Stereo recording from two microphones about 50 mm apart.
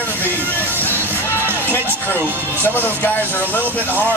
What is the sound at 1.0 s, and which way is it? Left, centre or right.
Music, left.